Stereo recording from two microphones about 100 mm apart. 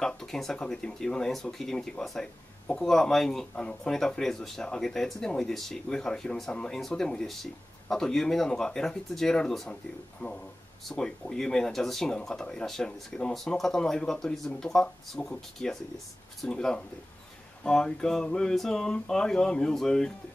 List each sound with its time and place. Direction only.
0.0 s speech: 5° left (ahead or behind)
10.2 s speech: 15° left (ahead or behind)
10.9 s speech: 5° left (ahead or behind)